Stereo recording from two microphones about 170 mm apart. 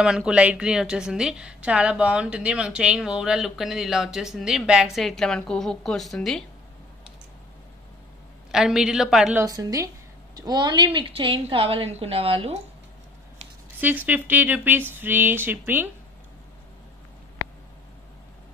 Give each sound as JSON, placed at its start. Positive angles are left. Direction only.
{"t": 0.0, "sound": "a woman's voice", "side_deg": -5}
{"t": 8.5, "sound": "a woman's voice", "side_deg": -5}
{"t": 9.4, "sound": "a woman's voice", "side_deg": -20}
{"t": 13.7, "sound": "speech", "side_deg": -10}